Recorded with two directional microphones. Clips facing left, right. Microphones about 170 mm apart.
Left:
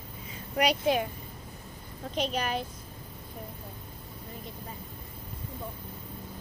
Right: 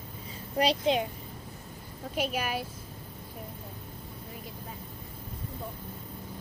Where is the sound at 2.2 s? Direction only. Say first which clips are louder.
Left 1 dB; 10° right (ahead or behind).